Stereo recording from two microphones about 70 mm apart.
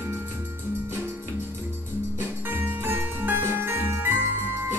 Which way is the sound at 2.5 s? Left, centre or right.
Right.